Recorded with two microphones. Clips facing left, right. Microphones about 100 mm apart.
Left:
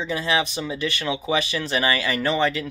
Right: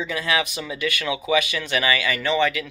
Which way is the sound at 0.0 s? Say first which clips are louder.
Left 1 dB; 30° left (ahead or behind).